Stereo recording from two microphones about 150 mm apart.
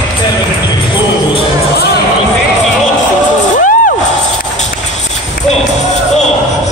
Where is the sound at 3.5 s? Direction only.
65° left (ahead or behind).